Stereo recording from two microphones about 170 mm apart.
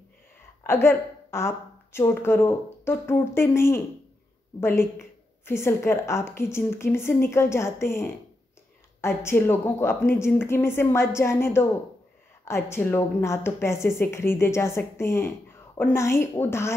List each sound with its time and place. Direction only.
0.7 s a woman's voice: 15° left (ahead or behind)